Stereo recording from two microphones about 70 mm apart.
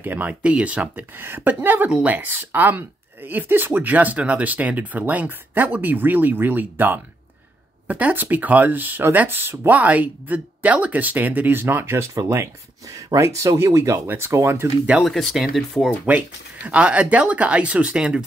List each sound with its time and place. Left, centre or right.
0.0 s speech: right
13.2 s speech: right
15.0 s speech: centre
16.1 s speech: centre